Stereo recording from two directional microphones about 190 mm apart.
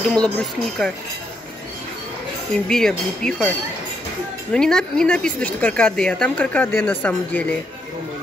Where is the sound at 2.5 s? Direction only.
5° left (ahead or behind).